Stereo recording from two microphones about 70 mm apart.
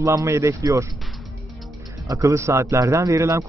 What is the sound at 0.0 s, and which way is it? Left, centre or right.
Speech, right.